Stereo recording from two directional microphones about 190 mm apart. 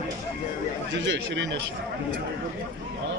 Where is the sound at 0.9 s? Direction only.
70° right (ahead or behind).